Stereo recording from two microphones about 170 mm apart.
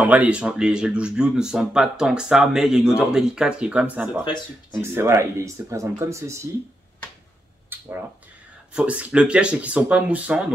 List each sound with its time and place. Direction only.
0.0 s speech: 10° right (ahead or behind)
8.7 s speech: 10° right (ahead or behind)